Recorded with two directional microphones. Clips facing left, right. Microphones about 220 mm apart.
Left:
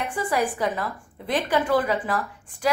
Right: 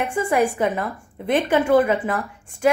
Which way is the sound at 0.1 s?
25° right (ahead or behind).